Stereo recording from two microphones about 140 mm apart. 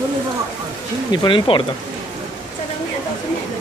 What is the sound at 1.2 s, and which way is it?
Speech, 40° left (ahead or behind).